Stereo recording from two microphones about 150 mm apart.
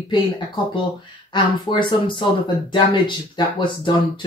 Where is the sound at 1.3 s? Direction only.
30° left (ahead or behind).